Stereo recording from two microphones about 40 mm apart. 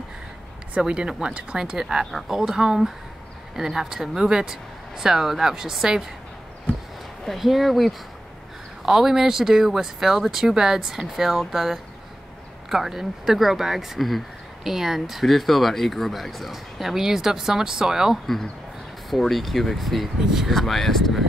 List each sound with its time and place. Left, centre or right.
0.7 s speech: right
2.0 s speech: centre
2.3 s speech: centre
7.2 s speech: centre
14.6 s speech: centre
18.2 s speech: centre